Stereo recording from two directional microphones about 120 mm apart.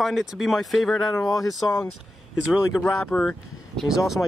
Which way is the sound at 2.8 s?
15° left (ahead or behind).